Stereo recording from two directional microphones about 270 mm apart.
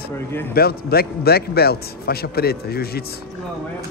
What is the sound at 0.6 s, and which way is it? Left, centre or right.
A man's voice, left.